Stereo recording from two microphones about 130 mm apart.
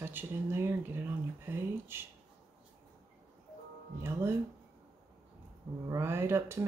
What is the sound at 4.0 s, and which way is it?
Speech, 20° right (ahead or behind).